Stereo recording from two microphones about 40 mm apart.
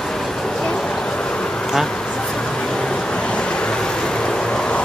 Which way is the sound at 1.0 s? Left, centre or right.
Left.